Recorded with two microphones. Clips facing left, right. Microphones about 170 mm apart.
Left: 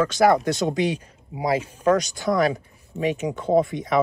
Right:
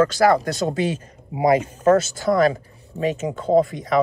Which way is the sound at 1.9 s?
15° left (ahead or behind).